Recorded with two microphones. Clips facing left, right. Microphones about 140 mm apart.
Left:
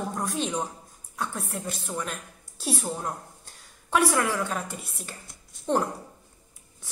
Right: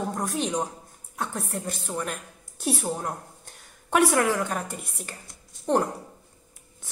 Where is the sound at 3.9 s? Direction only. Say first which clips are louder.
Right 2 dB; 50° right (ahead or behind).